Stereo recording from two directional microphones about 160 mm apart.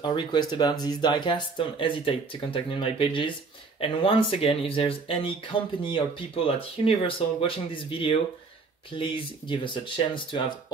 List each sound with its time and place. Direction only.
0.0 s speech: 30° left (ahead or behind)